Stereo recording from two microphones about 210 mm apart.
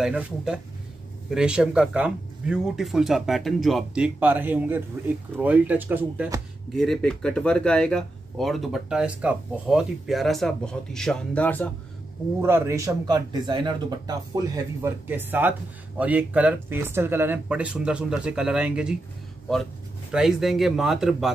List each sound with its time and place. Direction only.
0.0 s speech: 5° right (ahead or behind)
6.8 s speech: centre (ahead or behind)
12.4 s a man's voice: 10° right (ahead or behind)
20.1 s speech: centre (ahead or behind)